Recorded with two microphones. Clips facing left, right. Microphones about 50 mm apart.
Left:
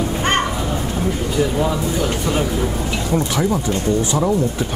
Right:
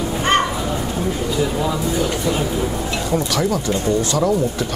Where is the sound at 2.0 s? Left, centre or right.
Left.